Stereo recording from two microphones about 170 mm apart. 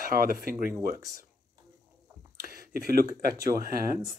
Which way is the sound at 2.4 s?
60° right (ahead or behind).